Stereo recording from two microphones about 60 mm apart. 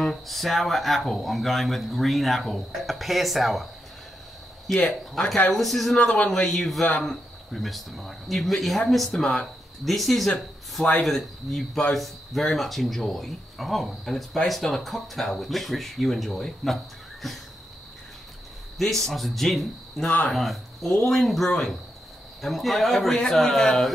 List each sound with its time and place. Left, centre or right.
0.0 s speech: centre
4.7 s speech: centre
5.9 s speech: centre
6.4 s speech: centre
18.8 s speech: centre
20.1 s speech: left
20.3 s speech: centre